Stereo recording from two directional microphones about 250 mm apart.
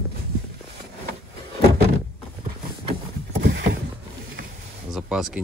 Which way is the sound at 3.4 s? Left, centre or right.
Right.